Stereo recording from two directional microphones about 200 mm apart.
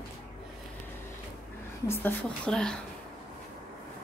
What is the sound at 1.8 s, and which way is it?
Speech, 10° left (ahead or behind).